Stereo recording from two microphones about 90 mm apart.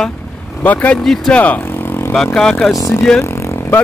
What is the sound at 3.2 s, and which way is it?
Vehicle, 30° left (ahead or behind).